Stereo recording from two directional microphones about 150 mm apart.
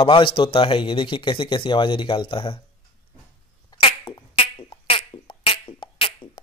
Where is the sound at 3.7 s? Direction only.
35° left (ahead or behind).